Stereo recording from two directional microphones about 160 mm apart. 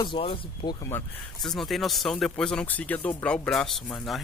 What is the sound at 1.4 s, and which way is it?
Speech, centre (ahead or behind).